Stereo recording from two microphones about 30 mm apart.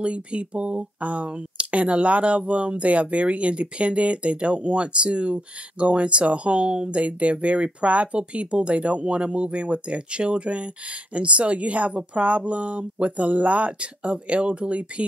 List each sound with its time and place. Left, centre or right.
0.0 s speech: right
7.0 s speech: right